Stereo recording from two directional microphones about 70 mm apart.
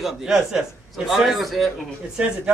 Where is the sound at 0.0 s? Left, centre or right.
Centre.